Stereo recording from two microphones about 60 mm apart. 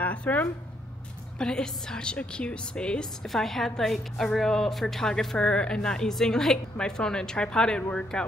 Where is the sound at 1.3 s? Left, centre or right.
Centre.